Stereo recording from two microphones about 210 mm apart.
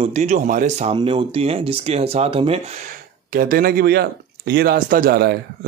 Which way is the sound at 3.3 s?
45° right (ahead or behind).